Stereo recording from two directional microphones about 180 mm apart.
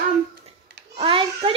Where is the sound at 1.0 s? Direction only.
30° right (ahead or behind).